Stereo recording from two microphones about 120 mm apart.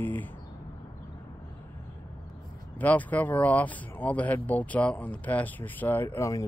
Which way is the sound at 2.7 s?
15° left (ahead or behind).